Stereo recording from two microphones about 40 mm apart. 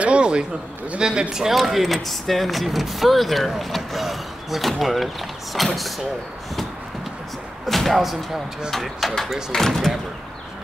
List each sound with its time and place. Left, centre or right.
0.0 s a sound: right
0.9 s speech: right
1.5 s speech: centre
7.6 s speech: centre